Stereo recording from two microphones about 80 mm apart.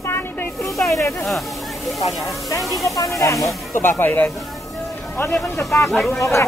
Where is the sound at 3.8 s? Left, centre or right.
Left.